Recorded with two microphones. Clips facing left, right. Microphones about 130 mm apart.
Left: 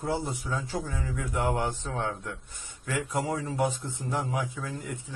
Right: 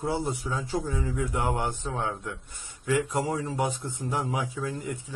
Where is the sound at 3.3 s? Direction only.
20° right (ahead or behind).